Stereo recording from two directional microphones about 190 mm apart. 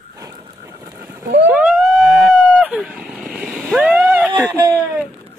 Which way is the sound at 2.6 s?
5° right (ahead or behind).